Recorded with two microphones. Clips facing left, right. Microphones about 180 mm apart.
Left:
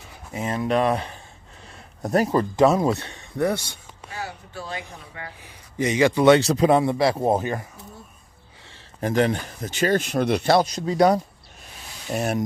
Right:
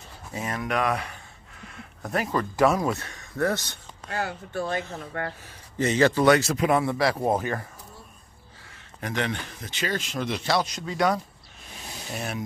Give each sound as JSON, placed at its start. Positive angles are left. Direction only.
{"t": 0.3, "sound": "a sound", "side_deg": 25}
{"t": 2.5, "sound": "speech", "side_deg": 25}
{"t": 3.3, "sound": "a sound", "side_deg": 15}
{"t": 4.1, "sound": "speech", "side_deg": -60}
{"t": 5.4, "sound": "a man's voice", "side_deg": 15}
{"t": 6.2, "sound": "speech", "side_deg": 30}
{"t": 9.0, "sound": "speech", "side_deg": 40}
{"t": 10.7, "sound": "speech", "side_deg": 35}
{"t": 12.2, "sound": "speech", "side_deg": 45}